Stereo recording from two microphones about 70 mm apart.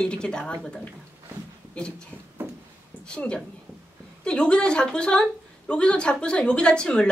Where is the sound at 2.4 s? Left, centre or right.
Right.